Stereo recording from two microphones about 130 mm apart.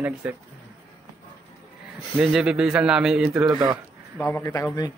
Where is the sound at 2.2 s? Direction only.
5° right (ahead or behind).